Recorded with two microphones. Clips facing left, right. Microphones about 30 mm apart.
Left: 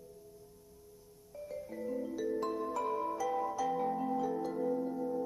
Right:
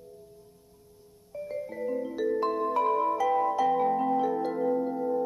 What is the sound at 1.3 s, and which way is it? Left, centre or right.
Music, right.